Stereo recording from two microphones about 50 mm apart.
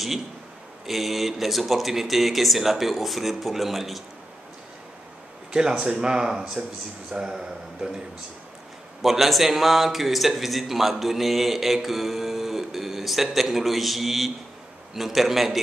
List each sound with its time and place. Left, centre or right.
0.8 s a man's voice: centre
5.5 s speech: centre
9.0 s a man's voice: centre